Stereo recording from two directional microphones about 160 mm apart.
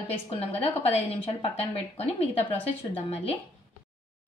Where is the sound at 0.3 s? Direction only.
40° left (ahead or behind).